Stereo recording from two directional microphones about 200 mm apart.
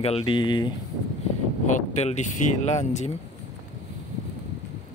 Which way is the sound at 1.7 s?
35° left (ahead or behind).